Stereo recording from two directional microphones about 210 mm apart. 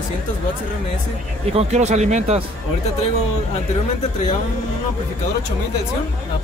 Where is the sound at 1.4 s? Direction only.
30° right (ahead or behind).